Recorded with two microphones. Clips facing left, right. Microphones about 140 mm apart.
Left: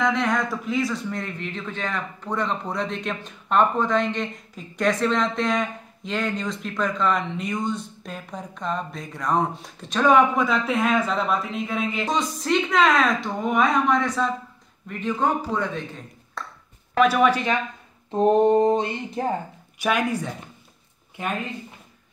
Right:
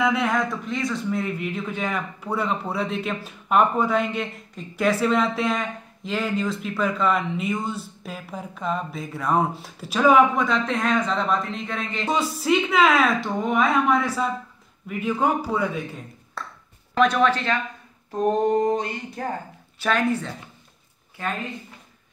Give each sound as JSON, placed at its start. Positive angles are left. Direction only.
{"t": 0.0, "sound": "speech", "side_deg": -5}
{"t": 12.1, "sound": "speech", "side_deg": -5}
{"t": 16.9, "sound": "speech", "side_deg": 5}
{"t": 18.1, "sound": "a sound", "side_deg": 25}
{"t": 19.8, "sound": "speech", "side_deg": 10}
{"t": 21.2, "sound": "a sound", "side_deg": 20}